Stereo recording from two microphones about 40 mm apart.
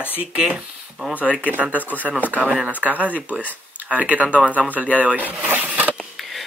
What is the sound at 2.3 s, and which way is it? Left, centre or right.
Speech, right.